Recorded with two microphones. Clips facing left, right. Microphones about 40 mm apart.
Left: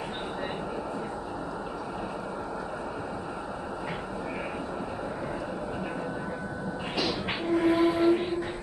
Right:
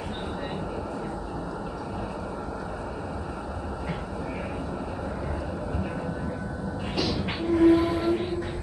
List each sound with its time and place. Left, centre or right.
7.0 s train: centre